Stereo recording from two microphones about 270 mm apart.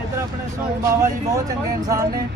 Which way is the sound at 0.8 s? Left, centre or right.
Centre.